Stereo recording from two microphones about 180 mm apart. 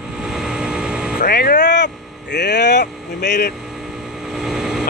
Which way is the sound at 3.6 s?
5° right (ahead or behind).